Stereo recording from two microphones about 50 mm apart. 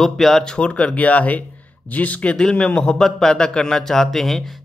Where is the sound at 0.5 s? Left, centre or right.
Left.